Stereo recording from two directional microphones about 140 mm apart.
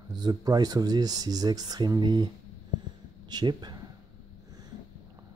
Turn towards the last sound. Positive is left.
turn(degrees=-30)  # may be behind; listen again after turning